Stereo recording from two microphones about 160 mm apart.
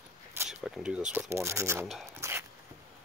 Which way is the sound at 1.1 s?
15° right (ahead or behind).